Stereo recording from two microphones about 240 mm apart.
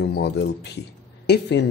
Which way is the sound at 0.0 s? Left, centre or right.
Left.